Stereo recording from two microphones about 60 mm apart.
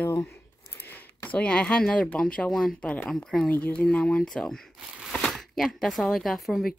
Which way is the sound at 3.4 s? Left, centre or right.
Left.